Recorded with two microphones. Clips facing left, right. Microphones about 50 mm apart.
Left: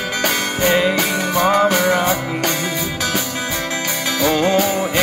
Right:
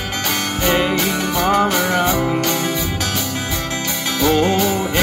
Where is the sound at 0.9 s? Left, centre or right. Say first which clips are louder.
Left 1 dB; left.